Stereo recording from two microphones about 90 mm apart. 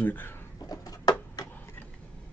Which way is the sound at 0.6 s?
45° left (ahead or behind).